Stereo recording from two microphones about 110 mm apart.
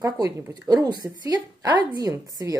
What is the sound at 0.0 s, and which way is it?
A woman's voice, 30° right (ahead or behind).